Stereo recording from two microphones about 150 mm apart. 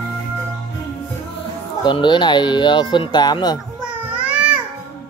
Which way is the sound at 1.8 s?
30° left (ahead or behind).